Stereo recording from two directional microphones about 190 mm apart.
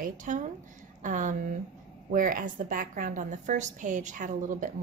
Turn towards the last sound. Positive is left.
turn(degrees=-45)  # may be behind; listen again after turning